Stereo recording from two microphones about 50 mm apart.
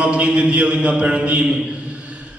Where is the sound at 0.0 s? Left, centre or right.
Right.